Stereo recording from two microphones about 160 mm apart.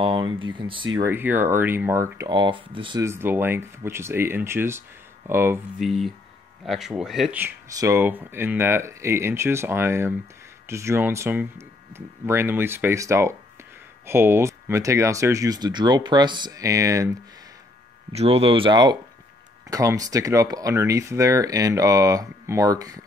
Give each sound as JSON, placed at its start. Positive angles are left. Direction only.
{"t": 0.0, "sound": "speech", "side_deg": -30}
{"t": 1.0, "sound": "speech", "side_deg": -15}
{"t": 3.0, "sound": "speech", "side_deg": -15}
{"t": 5.8, "sound": "speech", "side_deg": 0}
{"t": 7.7, "sound": "speech", "side_deg": -20}
{"t": 18.1, "sound": "speech", "side_deg": -40}